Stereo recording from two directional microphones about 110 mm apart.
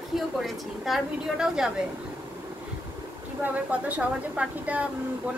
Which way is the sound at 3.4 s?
15° right (ahead or behind).